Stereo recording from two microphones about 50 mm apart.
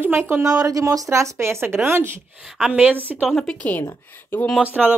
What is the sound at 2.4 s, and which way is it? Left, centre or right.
Speech, centre.